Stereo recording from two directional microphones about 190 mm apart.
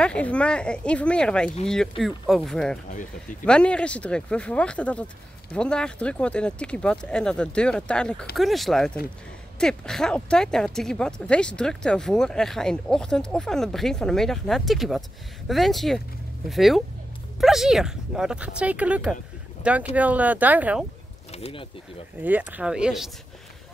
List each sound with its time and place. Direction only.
0.0 s speech: 5° left (ahead or behind)
2.9 s speech: 45° left (ahead or behind)
3.4 s speech: 5° left (ahead or behind)
21.3 s speech: 30° left (ahead or behind)
22.2 s speech: 10° right (ahead or behind)